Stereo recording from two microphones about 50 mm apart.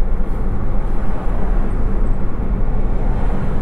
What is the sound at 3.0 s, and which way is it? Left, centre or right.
Vehicle, centre.